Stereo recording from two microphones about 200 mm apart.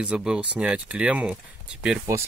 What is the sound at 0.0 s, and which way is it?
Speech, 5° right (ahead or behind).